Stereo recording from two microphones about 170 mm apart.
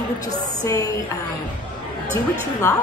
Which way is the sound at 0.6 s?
20° left (ahead or behind).